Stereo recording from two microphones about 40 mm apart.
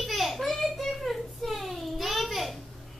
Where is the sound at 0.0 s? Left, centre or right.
Centre.